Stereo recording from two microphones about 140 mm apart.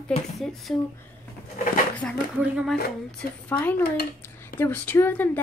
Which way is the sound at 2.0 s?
10° left (ahead or behind).